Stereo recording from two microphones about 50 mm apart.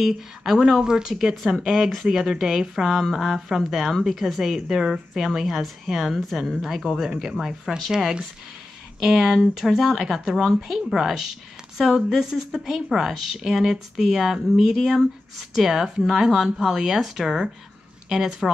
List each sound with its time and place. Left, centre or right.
0.0 s a woman's voice: centre